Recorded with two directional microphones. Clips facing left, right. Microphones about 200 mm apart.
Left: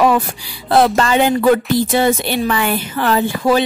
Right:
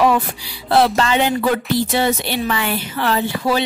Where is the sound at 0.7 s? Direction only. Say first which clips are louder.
Left 2 dB; 50° left (ahead or behind).